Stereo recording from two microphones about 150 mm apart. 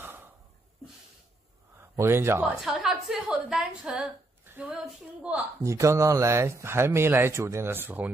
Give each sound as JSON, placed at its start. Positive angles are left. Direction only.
{"t": 0.0, "sound": "gasp", "side_deg": -15}
{"t": 1.8, "sound": "speech", "side_deg": -15}
{"t": 2.4, "sound": "a woman's voice", "side_deg": -5}
{"t": 5.6, "sound": "speech", "side_deg": -20}